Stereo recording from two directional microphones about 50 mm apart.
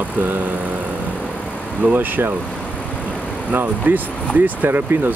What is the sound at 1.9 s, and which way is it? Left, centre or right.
Speech, right.